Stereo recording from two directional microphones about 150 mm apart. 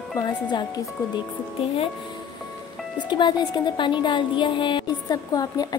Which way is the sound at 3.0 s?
30° left (ahead or behind).